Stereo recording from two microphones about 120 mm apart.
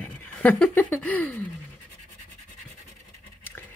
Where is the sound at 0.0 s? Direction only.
10° left (ahead or behind).